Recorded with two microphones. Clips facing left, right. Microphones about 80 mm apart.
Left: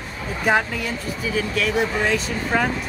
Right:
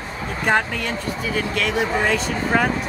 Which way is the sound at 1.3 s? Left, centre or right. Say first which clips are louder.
Left 1 dB; centre.